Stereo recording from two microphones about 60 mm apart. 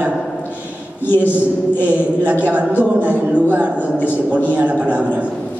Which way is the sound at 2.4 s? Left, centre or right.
Right.